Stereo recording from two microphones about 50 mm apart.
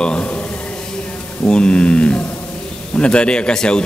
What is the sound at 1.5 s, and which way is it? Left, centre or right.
Speech, centre.